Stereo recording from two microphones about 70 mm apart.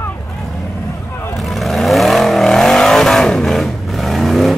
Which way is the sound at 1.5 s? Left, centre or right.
Centre.